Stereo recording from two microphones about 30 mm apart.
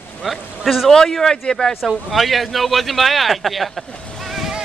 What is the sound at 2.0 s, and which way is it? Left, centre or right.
A man's voice, centre.